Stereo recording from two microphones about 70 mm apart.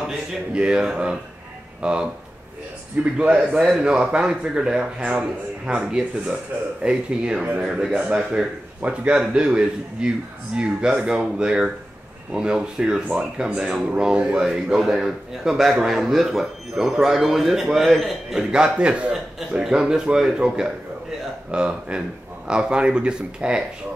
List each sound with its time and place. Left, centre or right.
0.0 s a man's voice: centre
7.9 s a man's voice: centre